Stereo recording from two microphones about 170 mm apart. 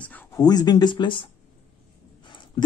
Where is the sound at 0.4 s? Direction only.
25° left (ahead or behind).